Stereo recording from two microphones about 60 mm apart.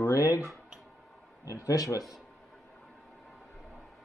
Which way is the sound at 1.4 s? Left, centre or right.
Left.